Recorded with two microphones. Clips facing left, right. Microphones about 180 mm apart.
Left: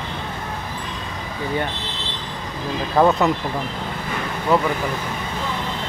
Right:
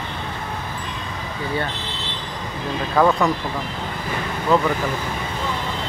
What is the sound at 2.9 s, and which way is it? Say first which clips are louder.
Speech: left 1 dB; 20° left (ahead or behind).